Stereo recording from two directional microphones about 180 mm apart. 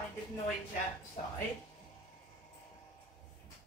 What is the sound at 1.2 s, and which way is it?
Speech, 45° left (ahead or behind).